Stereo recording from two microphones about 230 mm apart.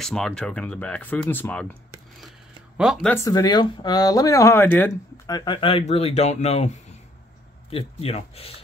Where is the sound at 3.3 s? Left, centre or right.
Centre.